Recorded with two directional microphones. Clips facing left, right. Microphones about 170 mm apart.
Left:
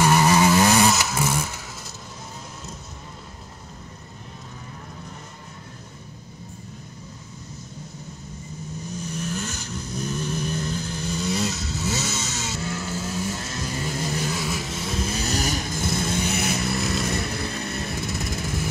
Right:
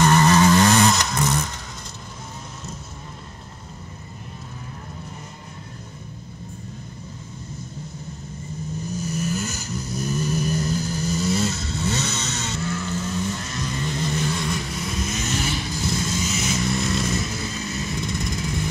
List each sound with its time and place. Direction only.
0.0 s music: 10° left (ahead or behind)
8.9 s vehicle: 10° right (ahead or behind)
13.3 s vehicle: 25° left (ahead or behind)
13.7 s vehicle: 5° left (ahead or behind)
14.9 s vehicle: 30° left (ahead or behind); by 16.6 s 60° left (ahead or behind)
16.6 s chainsaw: centre (ahead or behind)
17.1 s vehicle: 60° left (ahead or behind)